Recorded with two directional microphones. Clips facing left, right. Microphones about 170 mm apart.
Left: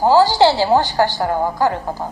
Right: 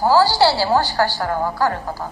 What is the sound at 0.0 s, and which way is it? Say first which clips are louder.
A woman's voice: left 3 dB; 20° left (ahead or behind).